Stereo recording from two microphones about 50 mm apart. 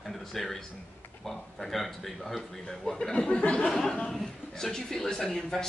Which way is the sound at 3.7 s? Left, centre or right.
Centre.